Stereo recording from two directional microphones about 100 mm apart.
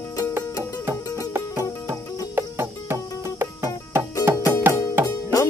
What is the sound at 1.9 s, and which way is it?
Music, 25° right (ahead or behind).